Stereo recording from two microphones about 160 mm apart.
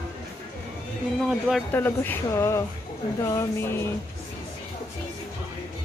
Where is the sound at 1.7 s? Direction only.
15° left (ahead or behind).